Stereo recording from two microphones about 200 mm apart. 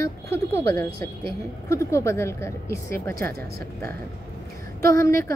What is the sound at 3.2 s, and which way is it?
Speech, 50° right (ahead or behind).